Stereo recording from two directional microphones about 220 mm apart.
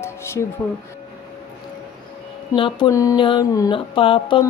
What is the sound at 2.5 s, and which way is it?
Speech, 20° left (ahead or behind).